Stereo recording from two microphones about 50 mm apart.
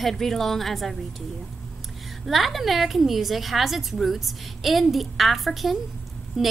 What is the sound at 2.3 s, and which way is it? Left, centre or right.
A woman's voice, centre.